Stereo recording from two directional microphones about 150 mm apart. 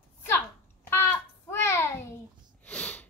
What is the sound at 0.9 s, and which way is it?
Child singing, 15° left (ahead or behind).